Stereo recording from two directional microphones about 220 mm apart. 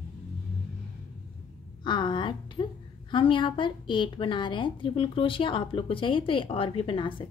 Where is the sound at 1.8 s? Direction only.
20° left (ahead or behind).